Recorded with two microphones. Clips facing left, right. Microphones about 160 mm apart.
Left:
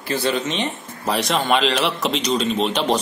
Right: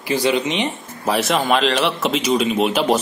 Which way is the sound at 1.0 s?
Centre (ahead or behind).